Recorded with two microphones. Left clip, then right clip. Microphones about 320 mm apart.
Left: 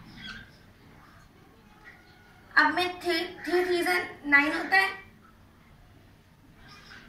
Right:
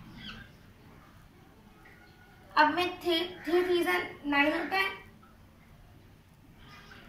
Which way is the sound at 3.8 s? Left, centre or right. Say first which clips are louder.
Left 2 dB; centre.